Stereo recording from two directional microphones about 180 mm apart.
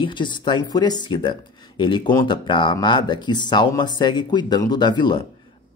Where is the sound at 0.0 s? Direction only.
25° left (ahead or behind).